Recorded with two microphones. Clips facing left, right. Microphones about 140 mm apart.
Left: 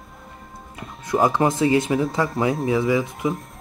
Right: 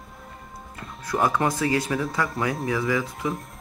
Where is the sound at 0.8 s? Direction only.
20° left (ahead or behind).